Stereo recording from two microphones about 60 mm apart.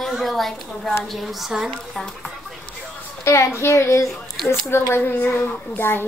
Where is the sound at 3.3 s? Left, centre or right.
Left.